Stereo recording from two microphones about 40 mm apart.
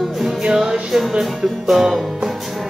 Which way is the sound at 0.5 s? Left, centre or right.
Centre.